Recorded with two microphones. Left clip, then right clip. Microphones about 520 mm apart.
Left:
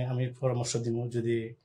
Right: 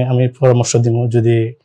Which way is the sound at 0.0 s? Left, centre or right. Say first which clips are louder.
Right 18 dB; right.